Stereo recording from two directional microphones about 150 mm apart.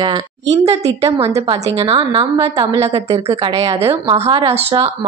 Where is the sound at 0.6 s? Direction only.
45° right (ahead or behind).